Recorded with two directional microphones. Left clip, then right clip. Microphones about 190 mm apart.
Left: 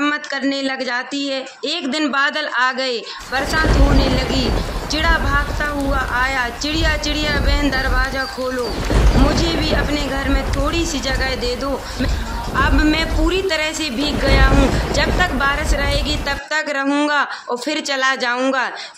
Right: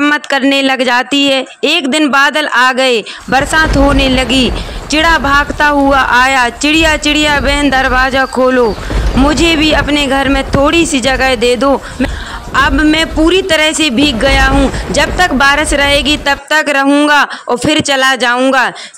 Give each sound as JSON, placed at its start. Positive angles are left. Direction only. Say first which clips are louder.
{"t": 0.0, "sound": "speech", "louder": "right 9 dB", "side_deg": -40}